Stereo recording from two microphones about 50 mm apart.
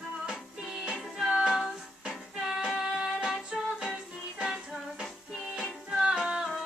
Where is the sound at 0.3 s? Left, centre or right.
Centre.